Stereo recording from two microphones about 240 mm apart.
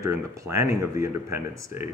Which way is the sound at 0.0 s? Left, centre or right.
Centre.